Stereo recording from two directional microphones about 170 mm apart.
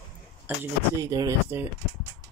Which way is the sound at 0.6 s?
15° right (ahead or behind).